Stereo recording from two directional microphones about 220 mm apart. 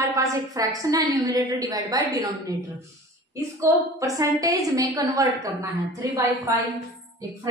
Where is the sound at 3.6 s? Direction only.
15° right (ahead or behind).